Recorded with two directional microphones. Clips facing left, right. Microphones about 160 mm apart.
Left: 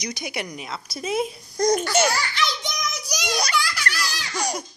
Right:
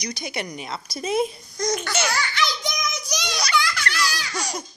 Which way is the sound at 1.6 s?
55° left (ahead or behind).